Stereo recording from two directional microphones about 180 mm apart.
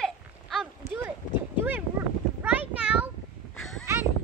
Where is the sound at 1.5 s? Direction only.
10° right (ahead or behind).